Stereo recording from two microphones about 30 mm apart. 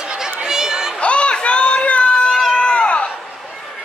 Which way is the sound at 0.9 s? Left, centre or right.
Left.